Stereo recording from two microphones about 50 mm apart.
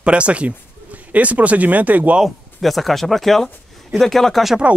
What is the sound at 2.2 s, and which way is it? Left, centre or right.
Speech, centre.